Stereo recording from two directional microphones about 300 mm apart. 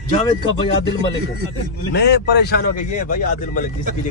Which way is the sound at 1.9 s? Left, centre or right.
Left.